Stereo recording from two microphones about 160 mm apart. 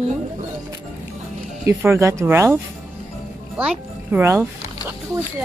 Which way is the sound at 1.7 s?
15° right (ahead or behind).